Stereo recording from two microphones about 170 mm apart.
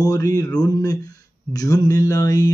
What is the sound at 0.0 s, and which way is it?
Speech, 20° left (ahead or behind).